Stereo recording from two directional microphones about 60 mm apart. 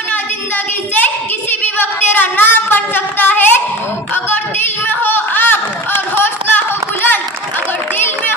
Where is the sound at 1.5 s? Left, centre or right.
Left.